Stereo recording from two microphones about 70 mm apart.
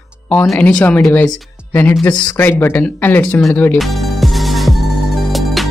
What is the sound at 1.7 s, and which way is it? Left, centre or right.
Speech, left.